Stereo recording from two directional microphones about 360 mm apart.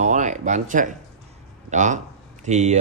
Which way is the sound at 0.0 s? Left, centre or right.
Centre.